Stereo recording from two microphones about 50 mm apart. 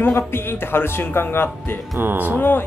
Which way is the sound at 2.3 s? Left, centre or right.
Left.